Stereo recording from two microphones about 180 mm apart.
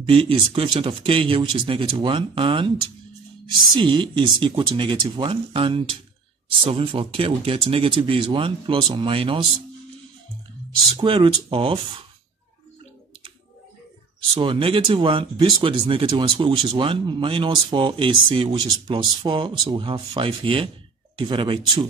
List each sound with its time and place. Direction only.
0.0 s speech: 30° right (ahead or behind)
3.7 s speech: 25° right (ahead or behind)
11.0 s speech: 30° right (ahead or behind)
14.3 s speech: 30° right (ahead or behind)